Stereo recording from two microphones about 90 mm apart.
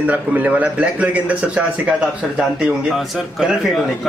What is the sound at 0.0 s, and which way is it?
A man's voice, 15° right (ahead or behind).